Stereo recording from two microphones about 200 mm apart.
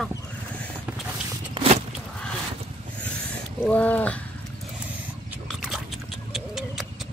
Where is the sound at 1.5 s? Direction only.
30° right (ahead or behind).